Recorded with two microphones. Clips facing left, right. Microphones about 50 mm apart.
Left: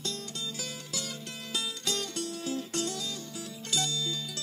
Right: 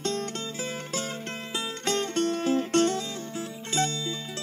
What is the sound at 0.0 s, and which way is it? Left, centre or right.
Music, right.